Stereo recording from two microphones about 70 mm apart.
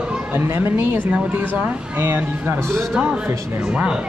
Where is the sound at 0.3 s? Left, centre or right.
Right.